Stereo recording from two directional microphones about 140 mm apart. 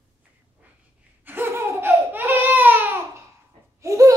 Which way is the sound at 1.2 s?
15° right (ahead or behind).